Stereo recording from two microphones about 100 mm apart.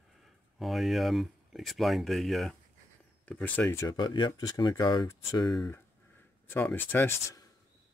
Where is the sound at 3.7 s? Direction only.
45° left (ahead or behind).